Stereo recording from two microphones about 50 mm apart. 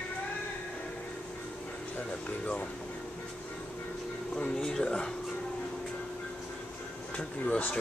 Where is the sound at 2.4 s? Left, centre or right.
Left.